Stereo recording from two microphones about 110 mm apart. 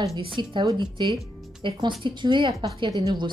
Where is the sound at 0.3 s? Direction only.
50° right (ahead or behind).